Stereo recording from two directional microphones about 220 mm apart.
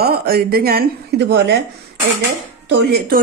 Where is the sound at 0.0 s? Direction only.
45° right (ahead or behind).